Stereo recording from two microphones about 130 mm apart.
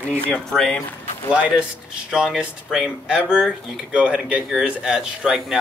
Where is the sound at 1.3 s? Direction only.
5° right (ahead or behind).